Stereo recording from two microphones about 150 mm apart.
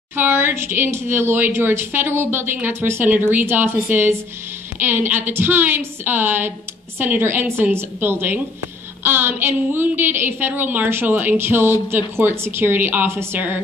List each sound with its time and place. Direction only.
0.1 s speech: 15° right (ahead or behind)